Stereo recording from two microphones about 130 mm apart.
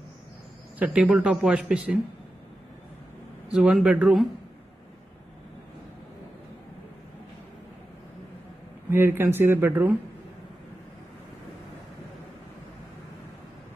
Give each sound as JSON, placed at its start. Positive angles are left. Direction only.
{"t": 0.7, "sound": "speech", "side_deg": -10}
{"t": 3.4, "sound": "speech", "side_deg": -5}
{"t": 8.9, "sound": "speech", "side_deg": -15}